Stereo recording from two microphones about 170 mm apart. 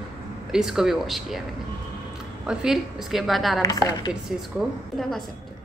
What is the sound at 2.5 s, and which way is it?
A woman's voice, 5° right (ahead or behind).